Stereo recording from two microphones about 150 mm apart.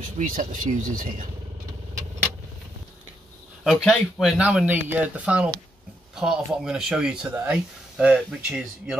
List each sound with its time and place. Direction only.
0.0 s speech: 60° right (ahead or behind)
3.8 s speech: centre (ahead or behind)